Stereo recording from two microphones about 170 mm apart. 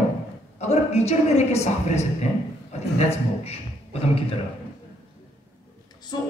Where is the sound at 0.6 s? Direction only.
40° left (ahead or behind).